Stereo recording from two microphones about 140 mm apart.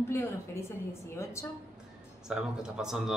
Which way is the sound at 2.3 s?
5° right (ahead or behind).